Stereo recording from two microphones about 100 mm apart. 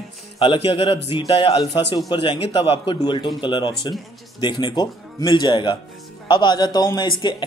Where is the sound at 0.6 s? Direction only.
65° left (ahead or behind).